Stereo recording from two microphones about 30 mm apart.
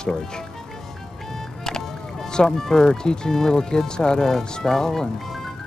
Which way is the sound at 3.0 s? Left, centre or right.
Left.